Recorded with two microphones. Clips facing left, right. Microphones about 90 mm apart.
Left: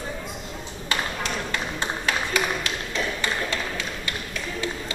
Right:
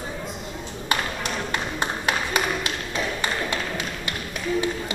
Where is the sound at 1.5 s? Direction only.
20° right (ahead or behind).